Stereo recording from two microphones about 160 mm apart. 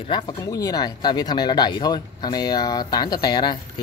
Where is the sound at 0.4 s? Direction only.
20° left (ahead or behind).